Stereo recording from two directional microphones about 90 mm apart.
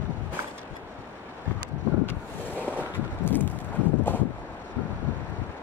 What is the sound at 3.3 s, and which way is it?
Clip-clop, 20° left (ahead or behind).